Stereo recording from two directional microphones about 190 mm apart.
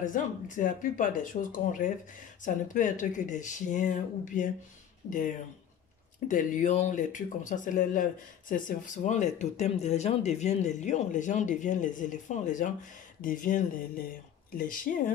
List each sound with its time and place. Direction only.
0.0 s speech: 45° left (ahead or behind)
6.2 s speech: 40° left (ahead or behind)